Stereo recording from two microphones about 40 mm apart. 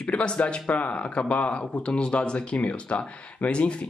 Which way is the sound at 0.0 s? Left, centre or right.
Left.